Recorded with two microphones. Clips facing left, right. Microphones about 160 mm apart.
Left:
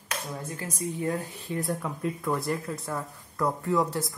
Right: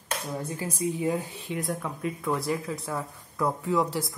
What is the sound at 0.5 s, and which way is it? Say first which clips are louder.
Speech: right 4 dB; 15° right (ahead or behind).